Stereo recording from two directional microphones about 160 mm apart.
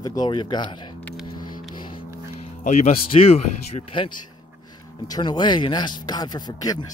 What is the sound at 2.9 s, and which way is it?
Speech, 35° left (ahead or behind).